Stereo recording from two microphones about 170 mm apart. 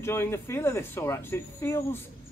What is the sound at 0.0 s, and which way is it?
Speech, 15° left (ahead or behind).